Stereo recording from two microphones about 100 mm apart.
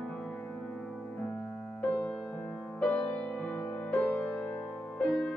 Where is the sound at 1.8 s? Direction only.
20° left (ahead or behind).